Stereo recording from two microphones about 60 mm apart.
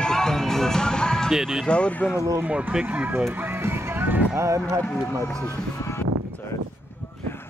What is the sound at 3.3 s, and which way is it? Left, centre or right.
Music, right.